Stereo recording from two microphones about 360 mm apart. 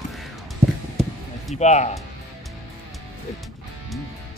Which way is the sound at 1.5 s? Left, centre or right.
Centre.